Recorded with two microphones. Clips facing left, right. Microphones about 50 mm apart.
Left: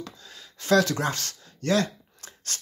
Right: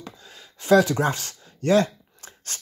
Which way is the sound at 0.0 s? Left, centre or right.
Centre.